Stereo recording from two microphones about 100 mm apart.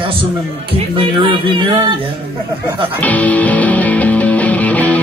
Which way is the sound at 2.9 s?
15° left (ahead or behind).